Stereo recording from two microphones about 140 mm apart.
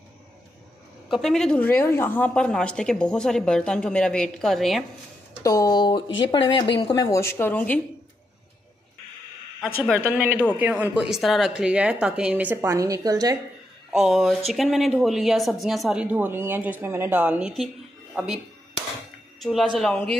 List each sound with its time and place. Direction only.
1.1 s a woman's voice: 5° left (ahead or behind)
5.4 s speech: 25° left (ahead or behind)
9.9 s speech: 10° right (ahead or behind)
12.7 s a woman's voice: 25° right (ahead or behind)
13.9 s a woman's voice: centre (ahead or behind)
19.4 s a woman's voice: centre (ahead or behind)